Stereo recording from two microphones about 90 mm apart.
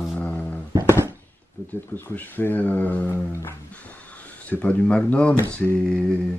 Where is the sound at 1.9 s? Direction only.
20° left (ahead or behind).